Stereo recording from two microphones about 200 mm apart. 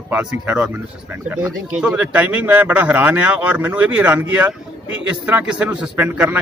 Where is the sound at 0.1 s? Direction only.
10° right (ahead or behind).